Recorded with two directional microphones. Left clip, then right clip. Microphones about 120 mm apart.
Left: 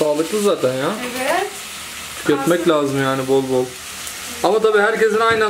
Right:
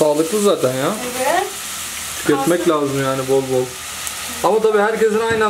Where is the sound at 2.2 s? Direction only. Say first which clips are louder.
Even; 20° left (ahead or behind).